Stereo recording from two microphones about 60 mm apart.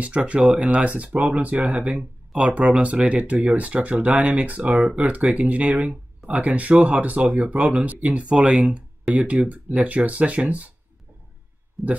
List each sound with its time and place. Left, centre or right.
0.0 s speech: right
11.8 s speech: centre